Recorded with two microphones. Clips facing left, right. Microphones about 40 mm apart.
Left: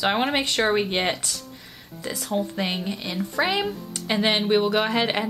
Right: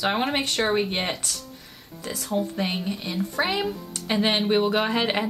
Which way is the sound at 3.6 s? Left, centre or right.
Centre.